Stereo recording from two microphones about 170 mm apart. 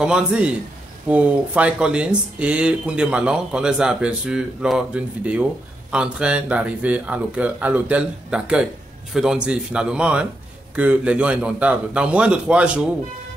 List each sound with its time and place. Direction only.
0.0 s speech: 5° right (ahead or behind)